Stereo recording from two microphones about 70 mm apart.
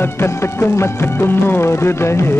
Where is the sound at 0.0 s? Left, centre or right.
Left.